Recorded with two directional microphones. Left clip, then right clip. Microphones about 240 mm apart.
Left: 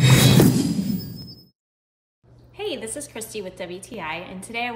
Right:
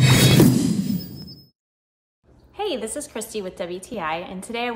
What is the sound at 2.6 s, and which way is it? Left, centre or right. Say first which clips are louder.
A woman's voice: right 3 dB; centre.